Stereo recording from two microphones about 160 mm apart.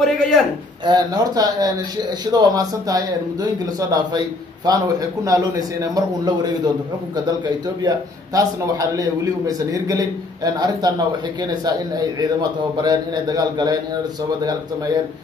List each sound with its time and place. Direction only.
0.0 s a man's voice: centre (ahead or behind)
0.8 s a man's voice: 25° right (ahead or behind)
4.7 s a man's voice: 25° right (ahead or behind)